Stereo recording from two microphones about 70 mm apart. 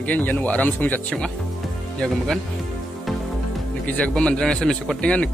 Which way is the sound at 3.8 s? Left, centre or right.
Left.